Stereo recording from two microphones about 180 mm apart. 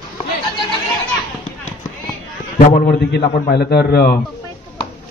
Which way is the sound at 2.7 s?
55° left (ahead or behind).